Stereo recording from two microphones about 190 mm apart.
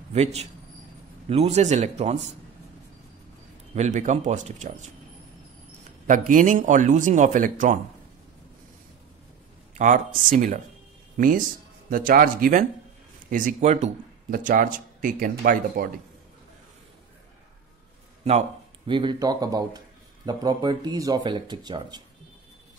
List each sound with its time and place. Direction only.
0.1 s speech: 35° right (ahead or behind)
3.7 s speech: 40° right (ahead or behind)
6.0 s speech: 45° right (ahead or behind)
9.8 s speech: 45° right (ahead or behind)
18.9 s speech: 25° right (ahead or behind)